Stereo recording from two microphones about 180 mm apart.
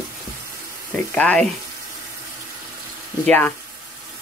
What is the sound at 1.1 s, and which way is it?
Speech, 5° left (ahead or behind).